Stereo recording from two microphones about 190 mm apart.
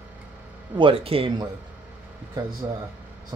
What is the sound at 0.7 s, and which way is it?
Speech, 30° right (ahead or behind).